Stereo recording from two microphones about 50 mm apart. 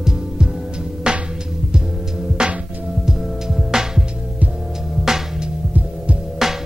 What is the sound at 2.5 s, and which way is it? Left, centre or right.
Music, right.